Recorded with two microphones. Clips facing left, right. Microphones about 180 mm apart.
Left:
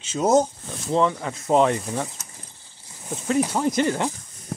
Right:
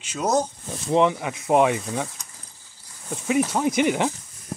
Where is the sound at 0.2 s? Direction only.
25° left (ahead or behind).